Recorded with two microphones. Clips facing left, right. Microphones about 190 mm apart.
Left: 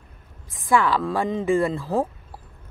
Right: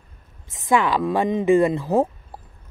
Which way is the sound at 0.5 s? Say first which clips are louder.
Right 1 dB; 20° right (ahead or behind).